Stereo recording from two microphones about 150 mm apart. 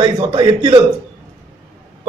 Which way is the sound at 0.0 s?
30° right (ahead or behind).